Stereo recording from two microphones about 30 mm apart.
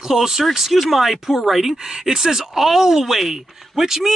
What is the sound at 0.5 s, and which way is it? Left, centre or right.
A woman's voice, centre.